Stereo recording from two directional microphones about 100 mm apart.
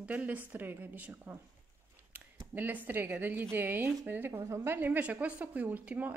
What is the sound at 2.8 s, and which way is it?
Speech, 20° right (ahead or behind).